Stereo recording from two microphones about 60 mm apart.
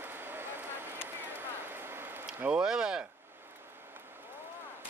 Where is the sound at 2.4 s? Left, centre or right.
Centre.